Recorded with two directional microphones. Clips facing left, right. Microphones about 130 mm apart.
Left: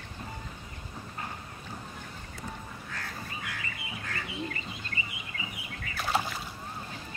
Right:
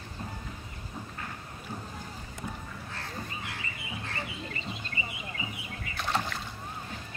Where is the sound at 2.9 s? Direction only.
30° right (ahead or behind).